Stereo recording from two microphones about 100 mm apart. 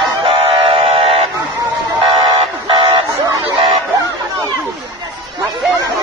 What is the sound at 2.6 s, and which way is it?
Vehicle, 60° right (ahead or behind).